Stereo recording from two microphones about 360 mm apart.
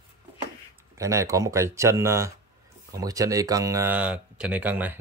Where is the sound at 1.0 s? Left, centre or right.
Centre.